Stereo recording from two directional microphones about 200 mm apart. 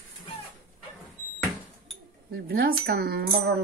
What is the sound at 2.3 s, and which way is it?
Speech, 50° right (ahead or behind).